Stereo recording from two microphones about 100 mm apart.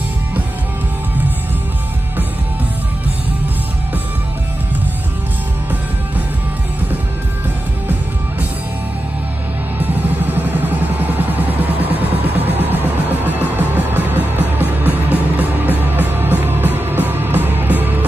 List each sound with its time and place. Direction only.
9.8 s music: 20° right (ahead or behind)
12.5 s music: 15° right (ahead or behind)